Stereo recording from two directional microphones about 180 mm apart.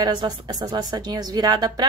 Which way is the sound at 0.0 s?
25° right (ahead or behind).